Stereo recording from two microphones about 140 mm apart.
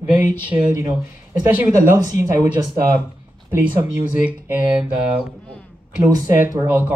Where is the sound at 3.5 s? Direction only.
15° right (ahead or behind).